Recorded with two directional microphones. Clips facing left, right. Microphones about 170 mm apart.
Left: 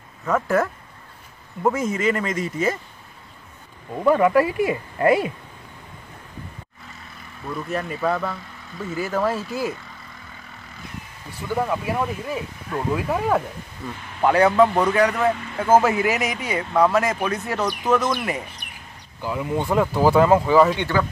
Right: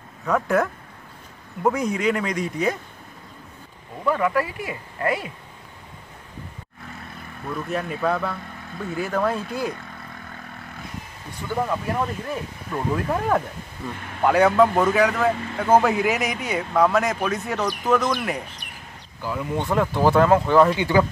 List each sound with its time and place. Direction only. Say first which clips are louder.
0.2 s a man's voice: even; centre (ahead or behind)
4.0 s speech: left 5 dB; 25° left (ahead or behind)
7.4 s a man's voice: even; centre (ahead or behind)
11.4 s a man's voice: left 1 dB; 5° left (ahead or behind)
19.2 s a man's voice: left 2 dB; 5° left (ahead or behind)
20.8 s speech: right 3 dB; 20° right (ahead or behind)